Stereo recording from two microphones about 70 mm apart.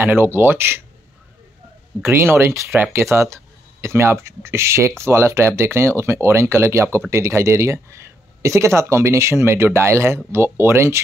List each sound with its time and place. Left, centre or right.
0.0 s speech: right
2.7 s speech: right